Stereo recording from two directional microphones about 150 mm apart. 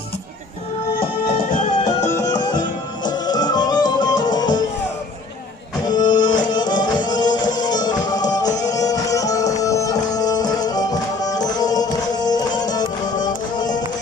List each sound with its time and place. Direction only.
1.4 s music: 60° left (ahead or behind)
2.0 s music: 20° left (ahead or behind)
5.9 s music: 30° left (ahead or behind)